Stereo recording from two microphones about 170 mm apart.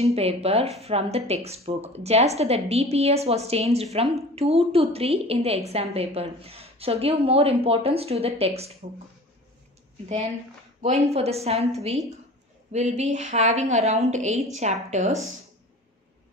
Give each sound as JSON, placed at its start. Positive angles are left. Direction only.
{"t": 0.0, "sound": "speech", "side_deg": -35}
{"t": 10.8, "sound": "a woman's voice", "side_deg": -35}